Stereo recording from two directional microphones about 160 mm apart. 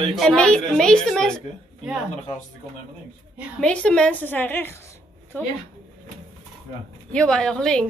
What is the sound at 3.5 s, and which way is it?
A woman's voice, 5° left (ahead or behind).